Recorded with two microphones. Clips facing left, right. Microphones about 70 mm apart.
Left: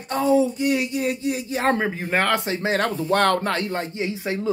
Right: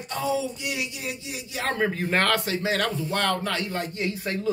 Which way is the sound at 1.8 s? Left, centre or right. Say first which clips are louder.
Left 1 dB; centre.